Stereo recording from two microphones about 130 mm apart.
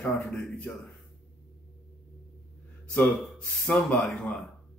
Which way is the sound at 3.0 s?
5° left (ahead or behind).